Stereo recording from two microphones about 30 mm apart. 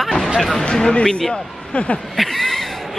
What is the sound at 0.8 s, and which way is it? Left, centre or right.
Speech, left.